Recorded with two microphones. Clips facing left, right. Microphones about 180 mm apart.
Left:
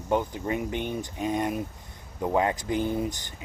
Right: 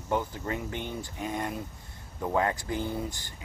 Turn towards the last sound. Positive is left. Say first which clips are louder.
# left 5 dB
turn(degrees=20)  # may be behind; listen again after turning